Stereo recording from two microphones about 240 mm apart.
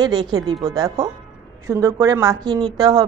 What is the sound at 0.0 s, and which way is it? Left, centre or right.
A woman's voice, centre.